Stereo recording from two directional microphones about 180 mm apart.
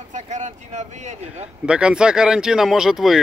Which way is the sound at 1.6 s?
5° right (ahead or behind).